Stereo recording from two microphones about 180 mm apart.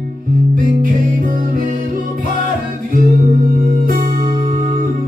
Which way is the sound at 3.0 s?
50° right (ahead or behind).